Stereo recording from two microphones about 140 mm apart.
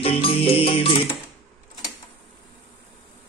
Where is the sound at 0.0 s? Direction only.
40° left (ahead or behind).